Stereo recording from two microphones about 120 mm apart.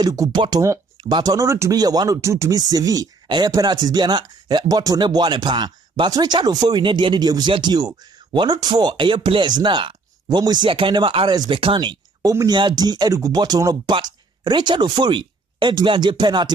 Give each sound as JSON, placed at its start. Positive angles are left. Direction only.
{"t": 0.0, "sound": "speech", "side_deg": -30}